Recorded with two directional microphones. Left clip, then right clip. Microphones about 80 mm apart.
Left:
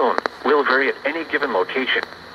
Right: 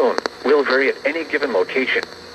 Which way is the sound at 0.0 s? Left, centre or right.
Right.